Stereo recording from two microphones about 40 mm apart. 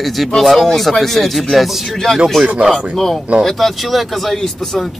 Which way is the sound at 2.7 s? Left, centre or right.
Centre.